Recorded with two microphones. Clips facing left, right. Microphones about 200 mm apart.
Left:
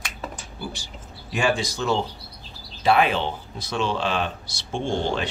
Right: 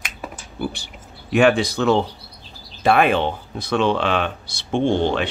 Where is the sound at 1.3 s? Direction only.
60° right (ahead or behind).